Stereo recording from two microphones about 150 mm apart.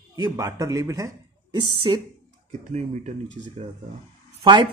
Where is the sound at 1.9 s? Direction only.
35° right (ahead or behind).